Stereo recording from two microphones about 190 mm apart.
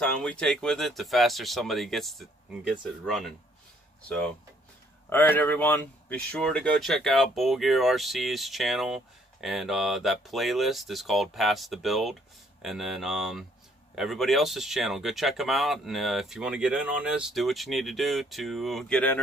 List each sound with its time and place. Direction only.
0.0 s speech: 5° left (ahead or behind)
5.1 s speech: 10° left (ahead or behind)